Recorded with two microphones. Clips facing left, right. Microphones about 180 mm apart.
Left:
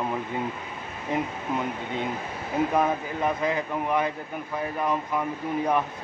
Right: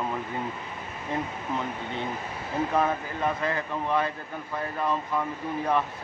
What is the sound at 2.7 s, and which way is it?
Speech, 15° left (ahead or behind).